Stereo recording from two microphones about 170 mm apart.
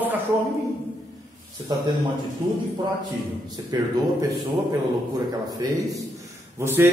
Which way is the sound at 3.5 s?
20° right (ahead or behind).